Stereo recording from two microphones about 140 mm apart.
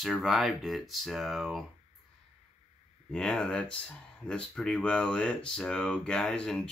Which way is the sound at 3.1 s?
5° left (ahead or behind).